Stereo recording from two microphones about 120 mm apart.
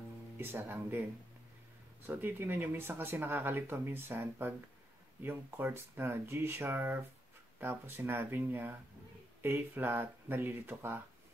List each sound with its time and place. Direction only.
0.4 s speech: 20° right (ahead or behind)
2.0 s speech: 15° right (ahead or behind)